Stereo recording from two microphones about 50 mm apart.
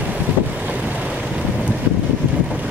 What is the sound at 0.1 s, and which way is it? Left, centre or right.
Boat, right.